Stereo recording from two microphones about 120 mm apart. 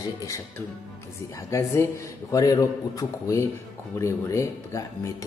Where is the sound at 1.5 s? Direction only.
25° left (ahead or behind).